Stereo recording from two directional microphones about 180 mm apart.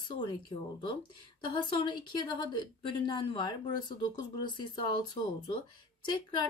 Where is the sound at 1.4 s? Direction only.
25° left (ahead or behind).